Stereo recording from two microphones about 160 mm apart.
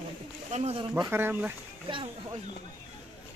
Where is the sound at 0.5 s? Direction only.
40° right (ahead or behind).